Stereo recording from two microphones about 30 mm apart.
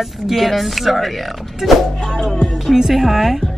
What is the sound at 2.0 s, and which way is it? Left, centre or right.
Speech, centre.